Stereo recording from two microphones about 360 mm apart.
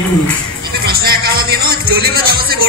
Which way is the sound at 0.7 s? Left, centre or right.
Right.